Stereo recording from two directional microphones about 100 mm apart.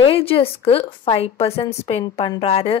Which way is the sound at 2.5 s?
80° left.